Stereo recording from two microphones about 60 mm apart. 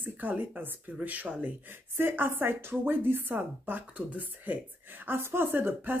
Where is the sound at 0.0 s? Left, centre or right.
Right.